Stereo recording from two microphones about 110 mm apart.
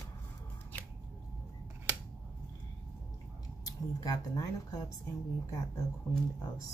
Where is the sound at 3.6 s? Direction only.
35° left (ahead or behind).